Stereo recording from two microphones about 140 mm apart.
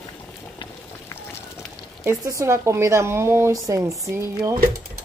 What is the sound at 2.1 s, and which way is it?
Speech, 20° right (ahead or behind).